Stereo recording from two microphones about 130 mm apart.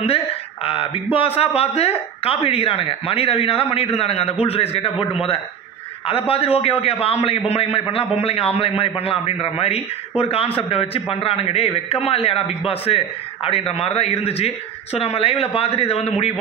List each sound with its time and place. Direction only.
0.0 s a man's voice: 45° left (ahead or behind)
6.0 s a man's voice: 45° left (ahead or behind)